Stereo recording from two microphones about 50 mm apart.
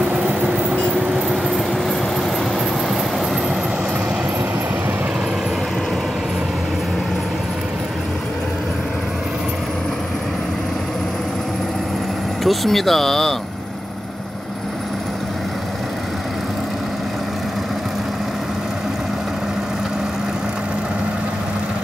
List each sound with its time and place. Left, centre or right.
0.0 s vehicle: right
12.4 s speech: centre